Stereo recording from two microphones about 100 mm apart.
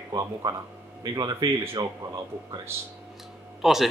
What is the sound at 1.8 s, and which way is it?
Speech, 40° right (ahead or behind).